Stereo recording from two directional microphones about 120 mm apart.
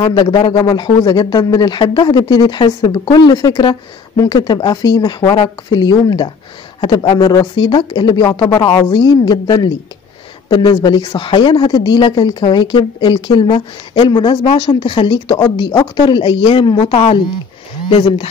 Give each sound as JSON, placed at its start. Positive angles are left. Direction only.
{"t": 0.0, "sound": "speech", "side_deg": 40}